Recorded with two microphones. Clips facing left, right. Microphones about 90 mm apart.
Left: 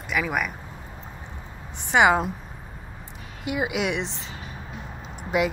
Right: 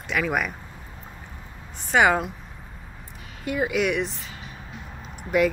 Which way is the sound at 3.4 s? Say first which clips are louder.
Right 2 dB; 15° left (ahead or behind).